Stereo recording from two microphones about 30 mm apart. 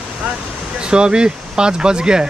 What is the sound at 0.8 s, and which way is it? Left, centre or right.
Speech, right.